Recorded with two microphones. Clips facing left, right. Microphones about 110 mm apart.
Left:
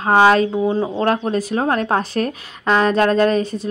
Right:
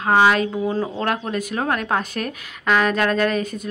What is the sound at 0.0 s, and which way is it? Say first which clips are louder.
Speech: left 3 dB; 35° left (ahead or behind).